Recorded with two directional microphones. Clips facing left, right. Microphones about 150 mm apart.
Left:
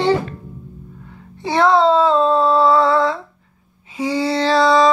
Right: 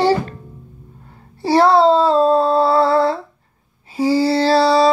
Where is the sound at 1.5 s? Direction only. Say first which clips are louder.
Right 2 dB; 35° right (ahead or behind).